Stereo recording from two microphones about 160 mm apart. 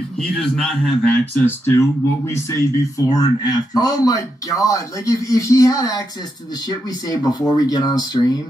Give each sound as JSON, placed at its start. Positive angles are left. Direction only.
{"t": 0.2, "sound": "speech", "side_deg": 5}
{"t": 7.1, "sound": "speech", "side_deg": 25}